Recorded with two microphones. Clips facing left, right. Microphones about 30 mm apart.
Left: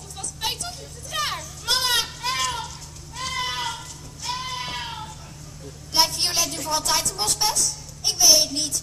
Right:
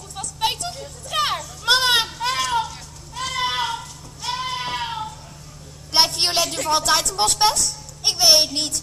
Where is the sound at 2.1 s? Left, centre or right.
Centre.